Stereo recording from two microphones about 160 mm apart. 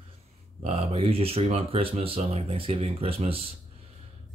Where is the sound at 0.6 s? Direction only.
35° right (ahead or behind).